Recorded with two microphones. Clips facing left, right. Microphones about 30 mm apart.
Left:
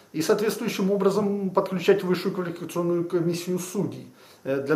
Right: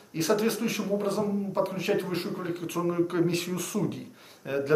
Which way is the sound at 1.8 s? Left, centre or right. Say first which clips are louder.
Left 7 dB; left.